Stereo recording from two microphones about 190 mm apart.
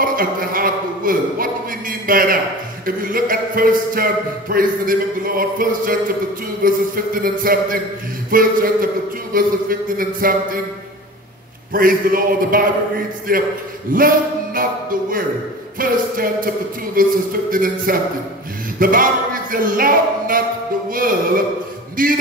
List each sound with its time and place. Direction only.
0.0 s a man's voice: 50° right (ahead or behind)
11.7 s a man's voice: 50° right (ahead or behind)
13.9 s a sound: 50° right (ahead or behind)
15.8 s a man's voice: 50° right (ahead or behind)
18.8 s a sound: 50° right (ahead or behind)
21.9 s a man's voice: 50° right (ahead or behind)